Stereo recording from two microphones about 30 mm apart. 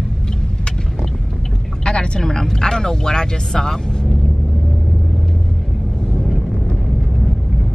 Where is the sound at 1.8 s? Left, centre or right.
Left.